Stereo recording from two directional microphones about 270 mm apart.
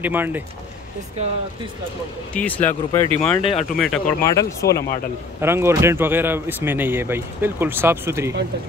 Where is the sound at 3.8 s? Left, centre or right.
Centre.